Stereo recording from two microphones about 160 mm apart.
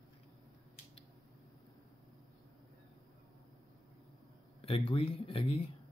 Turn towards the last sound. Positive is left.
turn(degrees=35)  # may be behind; listen again after turning